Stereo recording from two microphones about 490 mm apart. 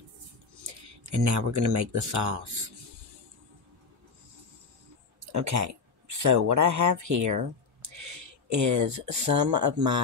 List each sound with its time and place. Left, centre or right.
1.1 s speech: right
5.2 s speech: right